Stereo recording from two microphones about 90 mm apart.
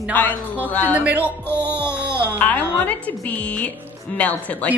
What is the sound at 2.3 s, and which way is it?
A woman's voice, 20° left (ahead or behind).